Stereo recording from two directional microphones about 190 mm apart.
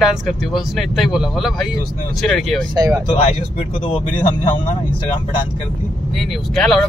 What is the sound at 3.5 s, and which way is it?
Speech, 30° left (ahead or behind).